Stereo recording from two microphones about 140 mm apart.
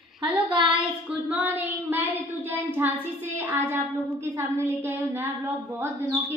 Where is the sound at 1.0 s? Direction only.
10° right (ahead or behind).